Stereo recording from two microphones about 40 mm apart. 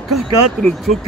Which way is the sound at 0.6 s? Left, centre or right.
Left.